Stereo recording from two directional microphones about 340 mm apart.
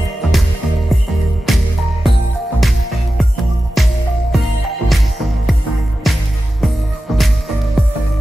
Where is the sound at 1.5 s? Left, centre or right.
Centre.